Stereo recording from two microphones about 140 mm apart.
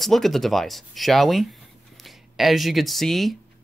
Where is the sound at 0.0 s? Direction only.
Centre (ahead or behind).